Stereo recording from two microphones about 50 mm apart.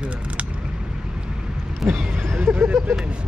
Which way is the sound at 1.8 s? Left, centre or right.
Centre.